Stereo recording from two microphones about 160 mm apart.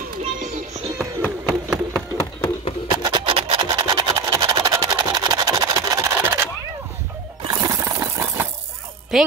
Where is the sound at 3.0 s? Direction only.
30° right (ahead or behind).